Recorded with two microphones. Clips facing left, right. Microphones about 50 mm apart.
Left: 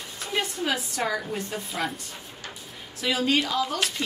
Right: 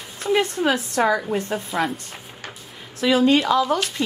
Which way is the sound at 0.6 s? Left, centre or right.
Right.